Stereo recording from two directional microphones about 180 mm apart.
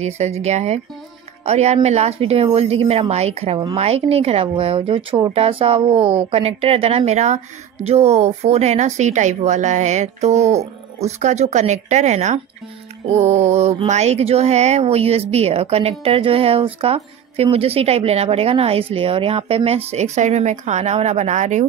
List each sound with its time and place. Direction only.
0.0 s speech: 35° right (ahead or behind)